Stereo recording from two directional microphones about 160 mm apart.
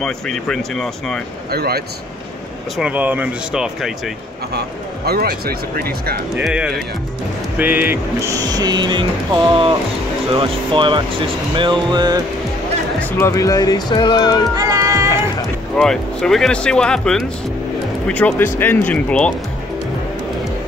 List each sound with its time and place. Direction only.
0.0 s speech: centre (ahead or behind)
1.5 s speech: 80° right
2.8 s speech: 10° right (ahead or behind)
4.6 s speech: 80° right
6.3 s speech: 5° right (ahead or behind)
8.4 s speech: 25° right (ahead or behind)
13.0 s speech: 20° left (ahead or behind)
14.5 s music: 20° right (ahead or behind)
15.7 s speech: 5° left (ahead or behind)